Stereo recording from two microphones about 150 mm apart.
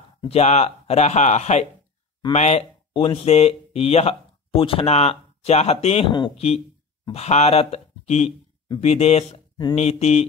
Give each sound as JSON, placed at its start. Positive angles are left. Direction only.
{"t": 0.3, "sound": "speech", "side_deg": 45}